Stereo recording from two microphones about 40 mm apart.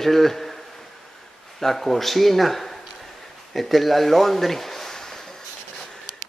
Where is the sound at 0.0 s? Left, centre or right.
Centre.